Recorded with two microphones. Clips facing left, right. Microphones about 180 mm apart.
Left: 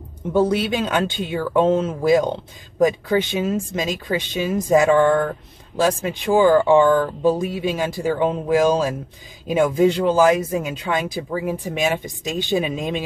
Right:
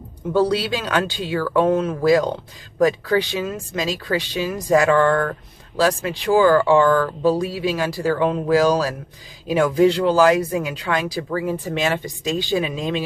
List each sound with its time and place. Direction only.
0.3 s speech: 20° left (ahead or behind)